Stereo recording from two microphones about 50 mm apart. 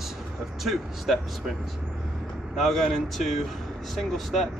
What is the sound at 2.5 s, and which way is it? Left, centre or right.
Speech, centre.